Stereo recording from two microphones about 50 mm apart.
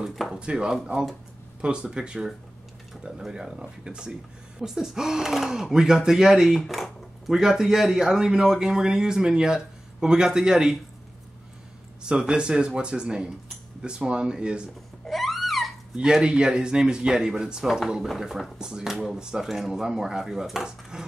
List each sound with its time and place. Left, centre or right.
0.3 s speech: centre
6.6 s speech: centre
12.0 s speech: centre
15.0 s a sound: centre
15.9 s speech: centre